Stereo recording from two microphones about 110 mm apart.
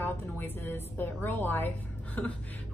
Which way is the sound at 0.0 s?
20° left (ahead or behind).